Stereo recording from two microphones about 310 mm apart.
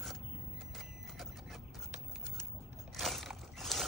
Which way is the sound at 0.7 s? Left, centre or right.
Centre.